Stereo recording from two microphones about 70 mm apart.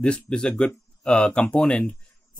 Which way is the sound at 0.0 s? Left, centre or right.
Centre.